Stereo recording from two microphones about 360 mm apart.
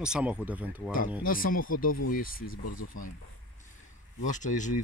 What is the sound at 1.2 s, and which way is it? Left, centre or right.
Speech, left.